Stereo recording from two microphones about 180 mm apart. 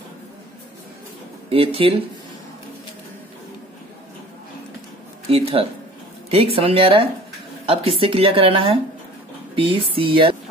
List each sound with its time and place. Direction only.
1.5 s speech: 30° right (ahead or behind)
5.3 s speech: 30° right (ahead or behind)